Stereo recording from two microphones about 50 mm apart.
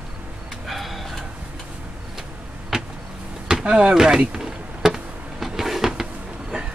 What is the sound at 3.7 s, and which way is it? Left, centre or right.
Speech, right.